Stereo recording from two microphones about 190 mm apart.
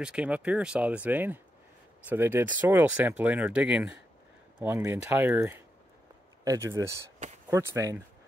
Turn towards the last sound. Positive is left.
turn(degrees=-15)  # may be behind; listen again after turning